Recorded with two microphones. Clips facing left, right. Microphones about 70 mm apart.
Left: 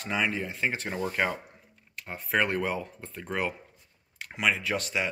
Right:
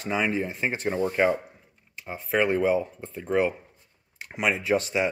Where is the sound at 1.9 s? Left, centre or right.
Centre.